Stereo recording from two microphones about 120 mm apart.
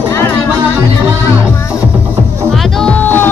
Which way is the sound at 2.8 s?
15° left (ahead or behind).